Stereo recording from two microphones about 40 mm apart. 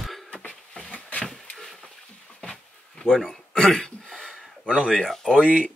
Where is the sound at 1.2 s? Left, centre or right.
Centre.